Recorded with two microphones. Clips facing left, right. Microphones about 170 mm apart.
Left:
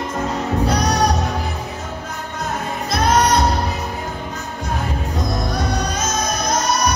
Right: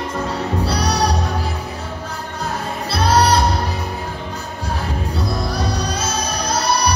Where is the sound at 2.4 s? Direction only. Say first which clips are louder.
Even; 30° right (ahead or behind).